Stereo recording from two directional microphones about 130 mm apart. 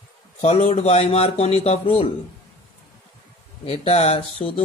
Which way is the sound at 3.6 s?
55° left (ahead or behind).